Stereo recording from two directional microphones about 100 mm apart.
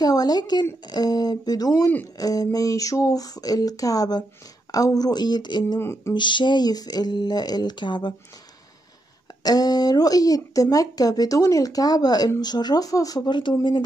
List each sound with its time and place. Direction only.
0.0 s speech: 40° left (ahead or behind)
5.8 s a sound: 25° left (ahead or behind)
6.1 s speech: 50° left (ahead or behind)
9.4 s speech: 40° left (ahead or behind)